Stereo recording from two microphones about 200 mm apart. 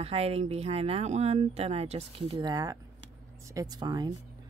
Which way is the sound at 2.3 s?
20° right (ahead or behind).